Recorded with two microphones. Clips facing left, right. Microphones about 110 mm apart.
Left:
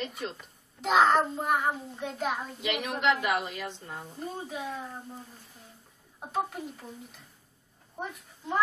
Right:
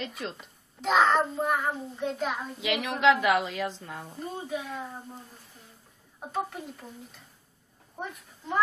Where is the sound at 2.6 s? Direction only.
90° right.